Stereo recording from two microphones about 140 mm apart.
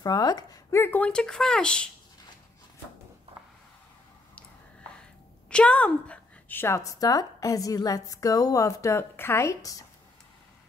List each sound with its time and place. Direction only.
0.0 s speech: 30° left (ahead or behind); by 1.9 s 5° left (ahead or behind)
5.5 s a woman's voice: 10° left (ahead or behind); by 9.8 s 25° left (ahead or behind)